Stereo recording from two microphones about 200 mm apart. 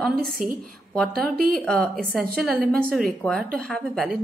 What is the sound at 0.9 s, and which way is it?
A woman's voice, 5° left (ahead or behind).